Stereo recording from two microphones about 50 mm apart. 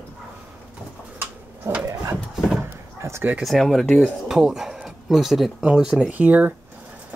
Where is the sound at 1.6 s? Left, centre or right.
Right.